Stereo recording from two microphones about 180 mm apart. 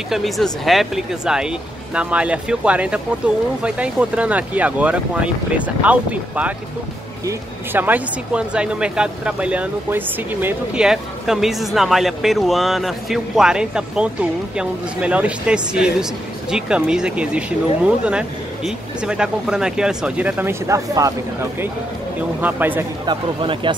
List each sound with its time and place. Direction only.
0.1 s speech: centre (ahead or behind); by 21.1 s 20° right (ahead or behind)
22.4 s speech: 10° right (ahead or behind)
23.0 s speech: 30° right (ahead or behind)